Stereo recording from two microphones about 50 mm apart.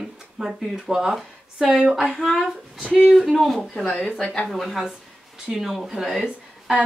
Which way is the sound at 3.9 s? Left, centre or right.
Left.